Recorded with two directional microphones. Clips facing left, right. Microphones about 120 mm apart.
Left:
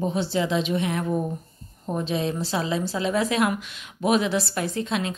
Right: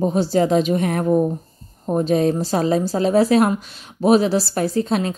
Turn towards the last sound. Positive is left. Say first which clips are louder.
# right 7 dB
turn(degrees=-40)  # may be behind; listen again after turning